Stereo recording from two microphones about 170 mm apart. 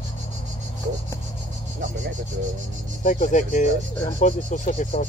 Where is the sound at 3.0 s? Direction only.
45° left (ahead or behind).